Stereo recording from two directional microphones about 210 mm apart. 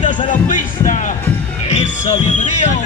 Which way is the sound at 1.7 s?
30° left (ahead or behind).